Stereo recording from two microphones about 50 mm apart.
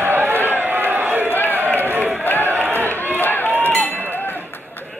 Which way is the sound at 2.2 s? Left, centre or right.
Left.